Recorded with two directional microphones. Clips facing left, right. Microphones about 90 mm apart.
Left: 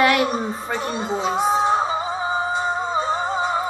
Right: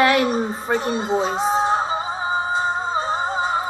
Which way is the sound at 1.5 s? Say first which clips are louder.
Right 1 dB; 30° right (ahead or behind).